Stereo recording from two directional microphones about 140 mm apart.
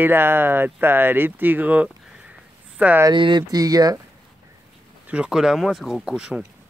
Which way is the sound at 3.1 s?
35° right (ahead or behind).